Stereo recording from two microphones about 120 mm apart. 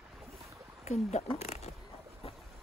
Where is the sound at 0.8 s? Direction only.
70° left (ahead or behind).